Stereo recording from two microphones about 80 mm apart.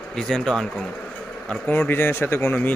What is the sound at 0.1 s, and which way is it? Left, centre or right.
Speech, centre.